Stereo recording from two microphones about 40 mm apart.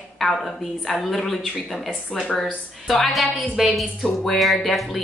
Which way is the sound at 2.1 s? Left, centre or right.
Left.